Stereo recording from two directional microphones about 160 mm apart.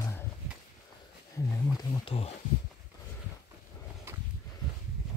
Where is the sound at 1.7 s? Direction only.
25° left (ahead or behind).